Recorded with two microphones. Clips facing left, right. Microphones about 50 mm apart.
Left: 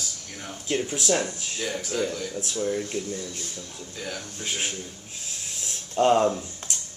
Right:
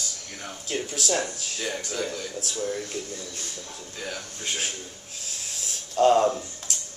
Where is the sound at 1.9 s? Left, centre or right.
Centre.